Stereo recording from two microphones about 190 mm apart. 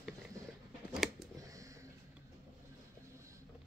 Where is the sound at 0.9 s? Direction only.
Centre (ahead or behind).